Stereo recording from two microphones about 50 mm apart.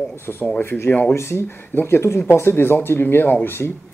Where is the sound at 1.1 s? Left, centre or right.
Left.